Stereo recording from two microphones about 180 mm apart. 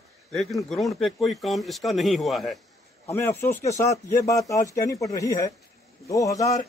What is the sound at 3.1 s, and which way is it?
Speech, 15° left (ahead or behind).